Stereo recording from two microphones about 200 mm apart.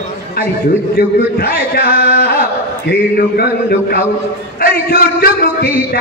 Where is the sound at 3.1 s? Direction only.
50° left (ahead or behind).